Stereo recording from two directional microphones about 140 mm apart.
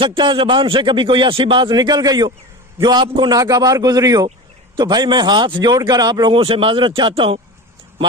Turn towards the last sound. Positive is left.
turn(degrees=-40)  # may be behind; listen again after turning